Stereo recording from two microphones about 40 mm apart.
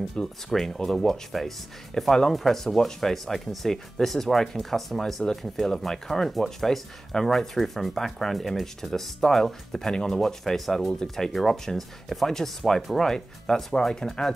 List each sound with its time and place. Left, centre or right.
0.2 s speech: left
0.5 s speech: centre